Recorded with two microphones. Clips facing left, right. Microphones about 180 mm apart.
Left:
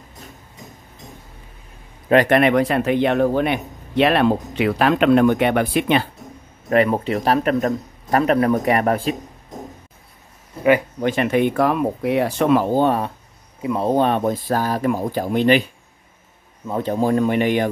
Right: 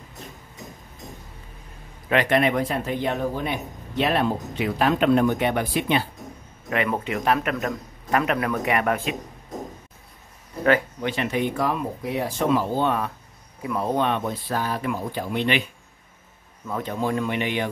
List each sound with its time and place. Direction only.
2.2 s speech: 65° left (ahead or behind)
6.7 s a man's voice: 35° left (ahead or behind)
11.0 s speech: 50° left (ahead or behind); by 12.6 s 65° left (ahead or behind)
12.7 s a man's voice: 35° left (ahead or behind)
13.6 s a man's voice: 25° left (ahead or behind); by 15.6 s 40° left (ahead or behind)
16.6 s a man's voice: 30° left (ahead or behind)